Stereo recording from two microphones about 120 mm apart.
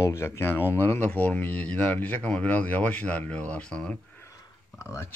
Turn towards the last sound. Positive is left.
turn(degrees=25)  # may be behind; listen again after turning